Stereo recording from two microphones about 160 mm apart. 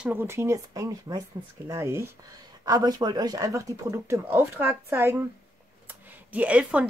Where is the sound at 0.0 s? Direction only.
15° right (ahead or behind).